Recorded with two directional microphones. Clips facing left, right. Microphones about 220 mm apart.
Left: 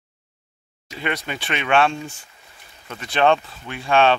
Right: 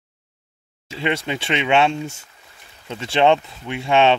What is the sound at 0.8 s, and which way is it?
Speech, 25° right (ahead or behind).